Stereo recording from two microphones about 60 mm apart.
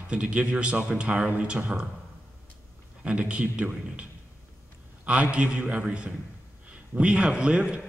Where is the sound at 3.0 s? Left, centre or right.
Centre.